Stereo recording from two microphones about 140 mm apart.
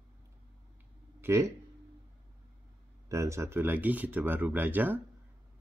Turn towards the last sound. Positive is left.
turn(degrees=-15)  # may be behind; listen again after turning